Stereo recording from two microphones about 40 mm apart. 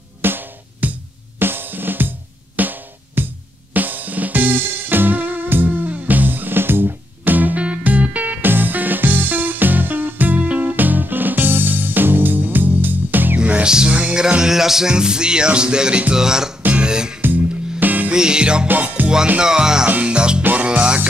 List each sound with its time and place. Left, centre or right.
0.2 s drum: right
0.8 s music: right
1.4 s drum: right
3.7 s music: right
7.5 s music: right
8.4 s music: right
13.4 s music: right
13.7 s music: centre
14.4 s music: centre
17.2 s music: right
18.1 s music: right
18.7 s music: right
19.4 s music: centre